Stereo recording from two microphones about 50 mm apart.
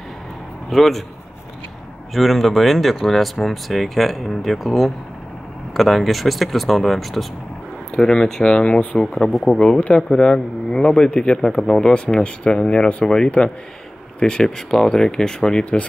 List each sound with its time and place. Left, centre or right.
0.7 s speech: centre
2.1 s speech: centre
7.9 s speech: centre
9.3 s speech: centre
9.8 s speech: left